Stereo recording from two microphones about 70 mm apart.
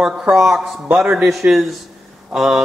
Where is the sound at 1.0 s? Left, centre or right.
Centre.